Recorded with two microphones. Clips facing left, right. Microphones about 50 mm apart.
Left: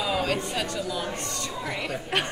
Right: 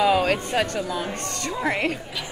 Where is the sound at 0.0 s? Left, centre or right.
Right.